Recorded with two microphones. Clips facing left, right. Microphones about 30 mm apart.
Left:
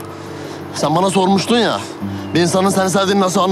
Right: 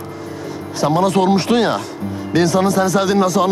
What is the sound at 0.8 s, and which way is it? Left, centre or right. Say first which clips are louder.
A man's voice: left 1 dB; left.